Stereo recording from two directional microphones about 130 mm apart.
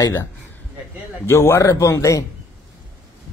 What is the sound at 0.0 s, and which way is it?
Speech, 20° left (ahead or behind).